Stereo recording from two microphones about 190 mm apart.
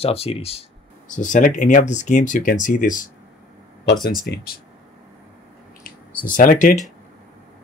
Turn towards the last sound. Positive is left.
turn(degrees=45)  # may be behind; listen again after turning